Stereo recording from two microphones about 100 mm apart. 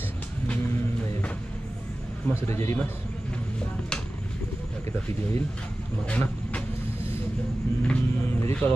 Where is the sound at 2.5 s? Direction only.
30° left (ahead or behind).